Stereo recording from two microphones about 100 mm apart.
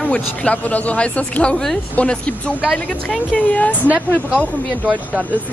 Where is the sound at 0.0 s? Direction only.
10° left (ahead or behind).